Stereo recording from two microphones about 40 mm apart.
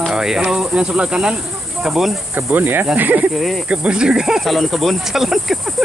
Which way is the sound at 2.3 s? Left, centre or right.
Right.